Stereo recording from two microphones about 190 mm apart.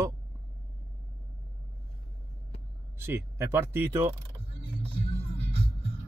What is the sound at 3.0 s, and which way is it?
Speech, 15° right (ahead or behind).